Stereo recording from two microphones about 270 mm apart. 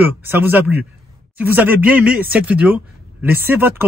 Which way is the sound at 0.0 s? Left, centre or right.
Centre.